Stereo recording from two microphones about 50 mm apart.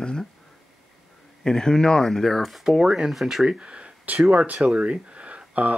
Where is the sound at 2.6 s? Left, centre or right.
Centre.